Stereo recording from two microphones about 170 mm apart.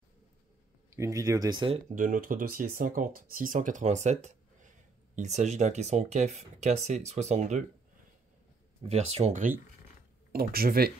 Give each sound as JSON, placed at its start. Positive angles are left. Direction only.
{"t": 0.8, "sound": "speech", "side_deg": -15}
{"t": 2.0, "sound": "speech", "side_deg": -55}
{"t": 8.8, "sound": "speech", "side_deg": -35}
{"t": 10.3, "sound": "speech", "side_deg": -60}